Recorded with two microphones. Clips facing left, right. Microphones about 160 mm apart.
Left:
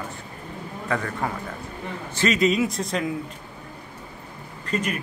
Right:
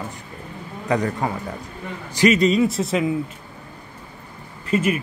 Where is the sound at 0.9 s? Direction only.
15° right (ahead or behind).